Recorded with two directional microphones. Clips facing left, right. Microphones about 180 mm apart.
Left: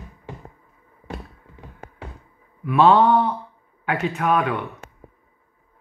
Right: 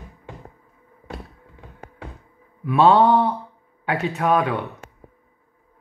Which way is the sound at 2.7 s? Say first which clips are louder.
Even; 30° right (ahead or behind).